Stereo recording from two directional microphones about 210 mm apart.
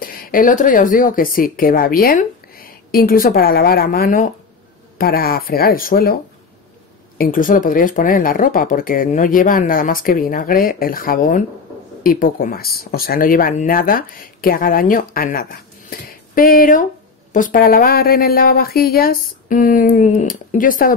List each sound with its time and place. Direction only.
0.0 s speech: 40° left (ahead or behind)
7.2 s speech: 40° left (ahead or behind)